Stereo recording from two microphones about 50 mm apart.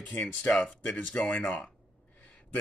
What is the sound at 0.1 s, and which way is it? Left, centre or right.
Speech, left.